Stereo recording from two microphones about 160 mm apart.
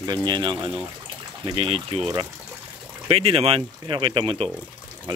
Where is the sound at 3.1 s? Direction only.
40° right (ahead or behind).